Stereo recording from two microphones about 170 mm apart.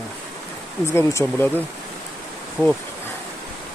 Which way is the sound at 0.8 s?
15° left (ahead or behind).